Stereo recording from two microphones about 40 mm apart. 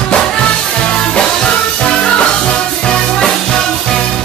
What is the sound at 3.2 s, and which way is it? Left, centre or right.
Music, centre.